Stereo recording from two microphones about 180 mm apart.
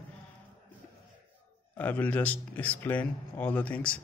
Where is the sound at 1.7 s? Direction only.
10° left (ahead or behind).